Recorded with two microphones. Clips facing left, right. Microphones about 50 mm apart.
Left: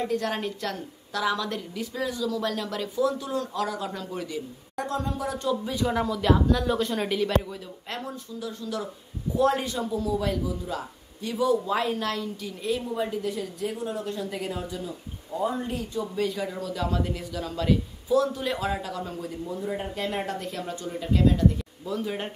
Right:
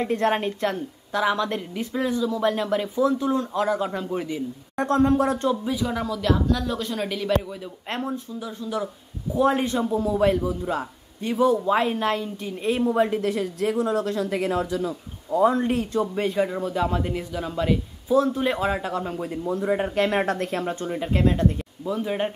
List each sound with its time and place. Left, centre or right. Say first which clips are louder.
0.1 s a woman's voice: right 5 dB; right
4.7 s speech: right 10 dB; right
5.7 s speech: even; centre
8.4 s a woman's voice: right 1 dB; centre; by 12.9 s right
12.9 s speech: right 6 dB; right
15.7 s speech: right 7 dB; right
16.2 s a woman's voice: right 5 dB; right
19.4 s speech: right 8 dB; right
21.8 s a woman's voice: right 5 dB; centre